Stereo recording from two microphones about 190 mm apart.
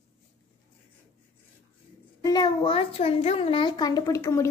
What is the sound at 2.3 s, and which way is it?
A child's voice, 25° left (ahead or behind).